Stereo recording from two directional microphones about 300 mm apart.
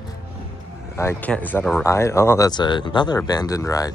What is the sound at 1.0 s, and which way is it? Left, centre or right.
Speech, centre.